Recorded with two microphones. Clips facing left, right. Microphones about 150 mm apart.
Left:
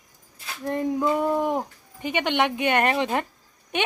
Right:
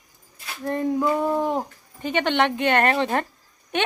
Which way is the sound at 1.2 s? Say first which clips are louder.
Even; 15° right (ahead or behind).